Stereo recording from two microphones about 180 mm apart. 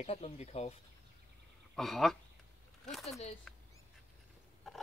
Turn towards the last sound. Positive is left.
turn(degrees=0)  # may be behind; listen again after turning